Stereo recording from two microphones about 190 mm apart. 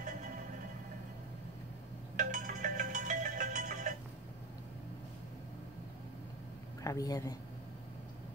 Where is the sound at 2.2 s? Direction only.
45° right (ahead or behind).